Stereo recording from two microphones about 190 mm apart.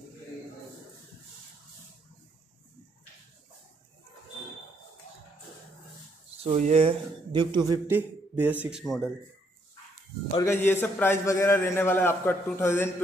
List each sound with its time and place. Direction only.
6.4 s a man's voice: 35° right (ahead or behind); by 9.1 s centre (ahead or behind)
10.3 s a man's voice: 15° left (ahead or behind)